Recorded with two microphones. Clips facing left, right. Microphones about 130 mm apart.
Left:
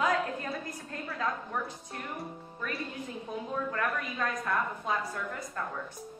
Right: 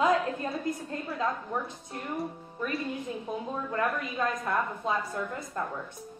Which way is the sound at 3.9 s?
25° right (ahead or behind).